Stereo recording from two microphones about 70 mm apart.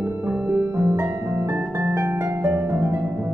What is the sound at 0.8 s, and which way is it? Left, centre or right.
Music, right.